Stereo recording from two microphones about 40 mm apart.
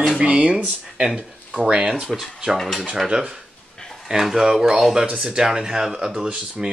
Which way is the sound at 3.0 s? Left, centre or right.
Centre.